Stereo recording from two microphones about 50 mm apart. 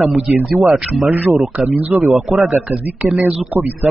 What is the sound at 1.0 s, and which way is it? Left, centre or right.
A man's voice, right.